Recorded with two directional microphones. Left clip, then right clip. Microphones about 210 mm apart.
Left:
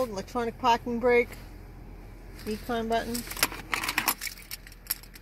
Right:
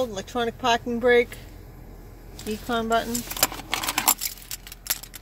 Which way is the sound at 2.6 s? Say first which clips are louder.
Right 5 dB; centre (ahead or behind).